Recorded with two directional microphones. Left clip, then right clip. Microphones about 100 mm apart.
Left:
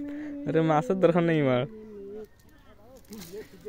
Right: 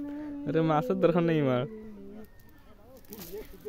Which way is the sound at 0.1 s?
20° left (ahead or behind).